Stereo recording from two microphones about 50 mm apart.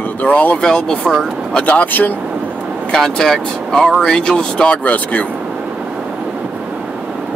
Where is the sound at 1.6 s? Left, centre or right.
Left.